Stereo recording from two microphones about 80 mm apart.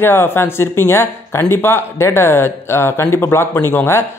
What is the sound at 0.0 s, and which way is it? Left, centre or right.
Speech, left.